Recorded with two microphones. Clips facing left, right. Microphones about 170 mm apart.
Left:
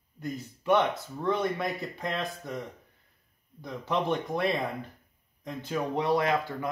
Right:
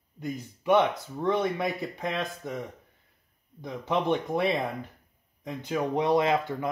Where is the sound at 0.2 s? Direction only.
15° right (ahead or behind).